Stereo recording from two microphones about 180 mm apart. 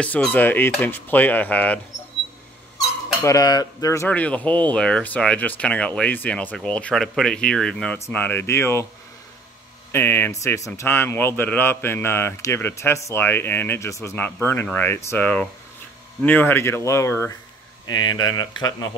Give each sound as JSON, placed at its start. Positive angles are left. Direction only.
{"t": 0.0, "sound": "cutlery", "side_deg": 10}
{"t": 3.2, "sound": "cutlery", "side_deg": 20}
{"t": 9.9, "sound": "cutlery", "side_deg": 10}
{"t": 17.8, "sound": "speech", "side_deg": 25}